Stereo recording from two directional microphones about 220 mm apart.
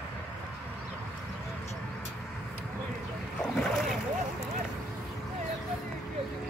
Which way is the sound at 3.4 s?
5° left (ahead or behind).